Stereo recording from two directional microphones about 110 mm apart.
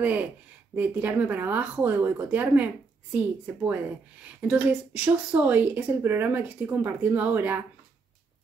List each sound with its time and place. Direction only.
0.0 s a woman's voice: 15° right (ahead or behind)